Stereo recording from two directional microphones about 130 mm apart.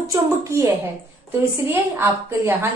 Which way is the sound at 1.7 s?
20° right (ahead or behind).